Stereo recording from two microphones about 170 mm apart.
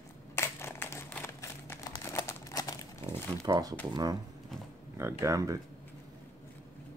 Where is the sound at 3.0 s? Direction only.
30° right (ahead or behind).